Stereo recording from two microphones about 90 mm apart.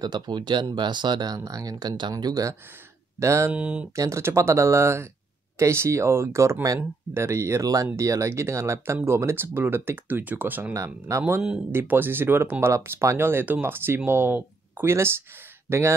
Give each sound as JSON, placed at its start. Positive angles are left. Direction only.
{"t": 0.0, "sound": "speech", "side_deg": -50}
{"t": 3.5, "sound": "speech", "side_deg": -15}
{"t": 3.9, "sound": "speech", "side_deg": -35}
{"t": 10.7, "sound": "speech", "side_deg": -35}